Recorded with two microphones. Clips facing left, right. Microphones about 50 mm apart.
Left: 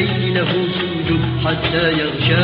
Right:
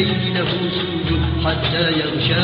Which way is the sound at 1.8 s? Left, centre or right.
Left.